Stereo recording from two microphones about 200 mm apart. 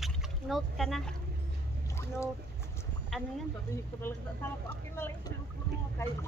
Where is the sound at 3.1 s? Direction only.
Centre (ahead or behind).